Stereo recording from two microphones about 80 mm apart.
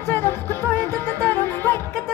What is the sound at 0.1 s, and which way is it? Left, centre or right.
Music, left.